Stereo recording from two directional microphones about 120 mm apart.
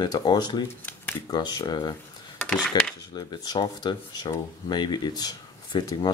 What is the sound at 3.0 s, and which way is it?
Speech, 35° left (ahead or behind).